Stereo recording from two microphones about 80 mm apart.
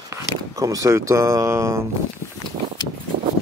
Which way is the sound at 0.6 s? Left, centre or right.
Right.